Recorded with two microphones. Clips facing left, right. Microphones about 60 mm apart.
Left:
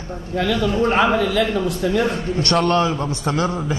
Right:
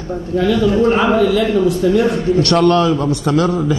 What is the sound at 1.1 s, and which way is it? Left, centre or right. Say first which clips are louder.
Speech: right 6 dB; right.